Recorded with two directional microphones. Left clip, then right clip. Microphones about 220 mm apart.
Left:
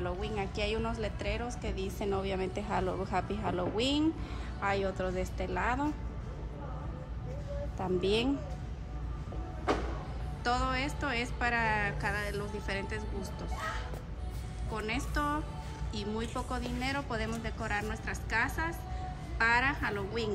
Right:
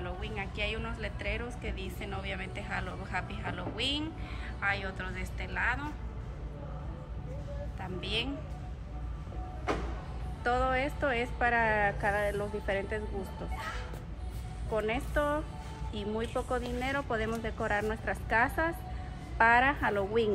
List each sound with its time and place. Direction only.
0.0 s a woman's voice: 15° left (ahead or behind)
8.0 s a woman's voice: 20° left (ahead or behind)
10.4 s a woman's voice: 5° left (ahead or behind)
14.7 s a woman's voice: centre (ahead or behind)